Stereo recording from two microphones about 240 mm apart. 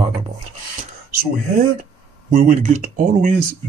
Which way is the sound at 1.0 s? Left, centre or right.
Right.